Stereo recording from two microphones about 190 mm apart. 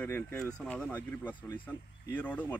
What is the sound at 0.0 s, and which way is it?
Speech, 5° left (ahead or behind).